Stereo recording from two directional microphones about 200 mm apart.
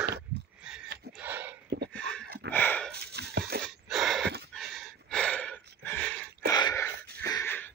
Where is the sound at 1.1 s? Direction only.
10° right (ahead or behind).